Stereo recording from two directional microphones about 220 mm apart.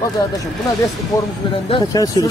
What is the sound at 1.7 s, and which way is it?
Speech, 15° left (ahead or behind).